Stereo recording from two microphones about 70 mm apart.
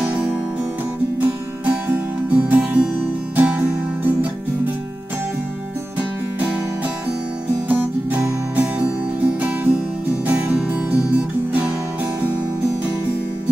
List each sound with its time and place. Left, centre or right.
0.0 s music: centre
1.2 s music: right
5.9 s music: right
7.6 s music: right